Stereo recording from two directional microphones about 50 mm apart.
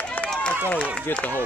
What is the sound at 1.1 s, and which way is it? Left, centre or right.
Speech, left.